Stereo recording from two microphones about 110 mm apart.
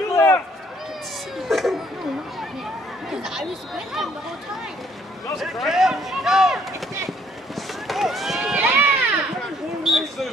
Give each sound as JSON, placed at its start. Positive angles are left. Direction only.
{"t": 0.1, "sound": "run", "side_deg": 20}
{"t": 1.5, "sound": "a sound", "side_deg": 0}
{"t": 3.1, "sound": "speech", "side_deg": -5}
{"t": 5.4, "sound": "speech", "side_deg": 0}
{"t": 7.1, "sound": "run", "side_deg": 0}
{"t": 8.5, "sound": "run", "side_deg": -20}
{"t": 9.8, "sound": "a sound", "side_deg": 0}